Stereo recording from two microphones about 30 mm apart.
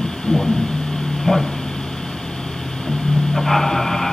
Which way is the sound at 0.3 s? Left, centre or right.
Left.